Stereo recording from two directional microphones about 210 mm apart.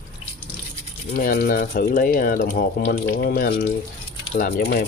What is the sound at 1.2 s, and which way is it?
Speech, 40° left (ahead or behind).